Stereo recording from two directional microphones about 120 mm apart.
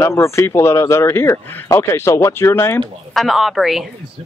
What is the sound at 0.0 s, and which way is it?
Speech, 25° left (ahead or behind).